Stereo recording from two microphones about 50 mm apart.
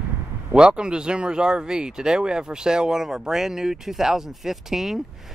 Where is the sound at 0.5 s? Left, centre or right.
Centre.